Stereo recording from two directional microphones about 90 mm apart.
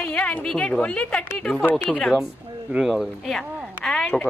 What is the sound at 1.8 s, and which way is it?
A woman's voice, 5° left (ahead or behind).